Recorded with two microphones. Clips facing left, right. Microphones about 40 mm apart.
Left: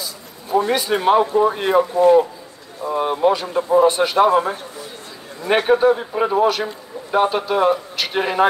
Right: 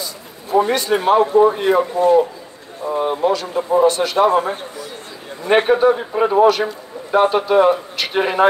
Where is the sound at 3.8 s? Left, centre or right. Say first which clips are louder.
Even; centre.